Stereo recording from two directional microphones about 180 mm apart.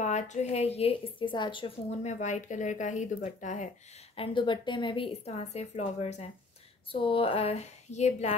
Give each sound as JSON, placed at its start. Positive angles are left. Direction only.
{"t": 0.0, "sound": "a woman's voice", "side_deg": 40}
{"t": 2.0, "sound": "speech", "side_deg": 40}
{"t": 4.2, "sound": "a woman's voice", "side_deg": 25}